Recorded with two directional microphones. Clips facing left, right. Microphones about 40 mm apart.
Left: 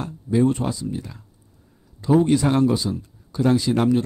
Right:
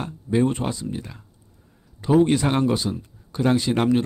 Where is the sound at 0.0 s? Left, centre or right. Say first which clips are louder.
Left 2 dB; right.